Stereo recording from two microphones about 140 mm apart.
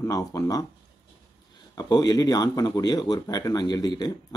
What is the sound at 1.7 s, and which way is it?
Speech, 30° left (ahead or behind).